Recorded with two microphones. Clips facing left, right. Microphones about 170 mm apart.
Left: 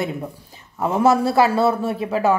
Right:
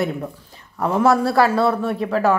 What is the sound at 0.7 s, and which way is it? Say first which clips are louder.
Speech: even; 20° left (ahead or behind).